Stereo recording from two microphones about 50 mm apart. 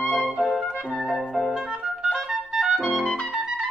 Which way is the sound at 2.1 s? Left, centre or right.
Centre.